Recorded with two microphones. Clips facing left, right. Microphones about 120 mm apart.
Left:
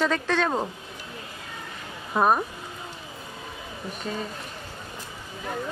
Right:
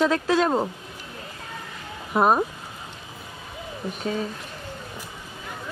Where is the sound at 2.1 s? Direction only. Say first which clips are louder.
Right 2 dB; 15° right (ahead or behind).